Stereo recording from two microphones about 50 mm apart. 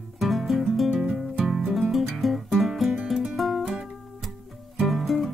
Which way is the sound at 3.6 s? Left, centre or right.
Centre.